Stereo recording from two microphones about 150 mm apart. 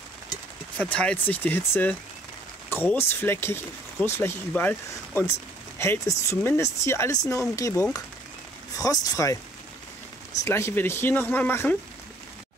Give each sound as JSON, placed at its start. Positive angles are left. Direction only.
{"t": 0.7, "sound": "speech", "side_deg": 10}
{"t": 10.4, "sound": "speech", "side_deg": 15}